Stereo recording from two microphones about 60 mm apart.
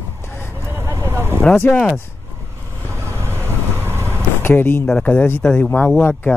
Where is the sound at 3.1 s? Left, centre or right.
Right.